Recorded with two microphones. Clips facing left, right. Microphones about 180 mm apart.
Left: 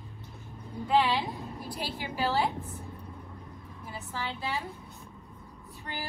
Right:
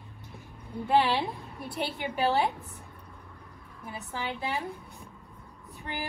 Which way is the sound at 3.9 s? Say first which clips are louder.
Right 2 dB; 15° right (ahead or behind).